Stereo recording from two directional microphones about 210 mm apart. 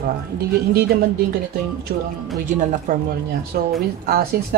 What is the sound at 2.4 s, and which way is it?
Speech, 35° right (ahead or behind).